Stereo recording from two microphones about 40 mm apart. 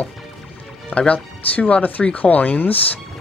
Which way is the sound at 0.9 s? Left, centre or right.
Left.